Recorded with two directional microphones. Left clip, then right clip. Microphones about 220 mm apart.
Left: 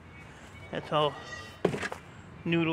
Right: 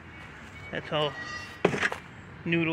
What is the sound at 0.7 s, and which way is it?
Speech, 15° left (ahead or behind).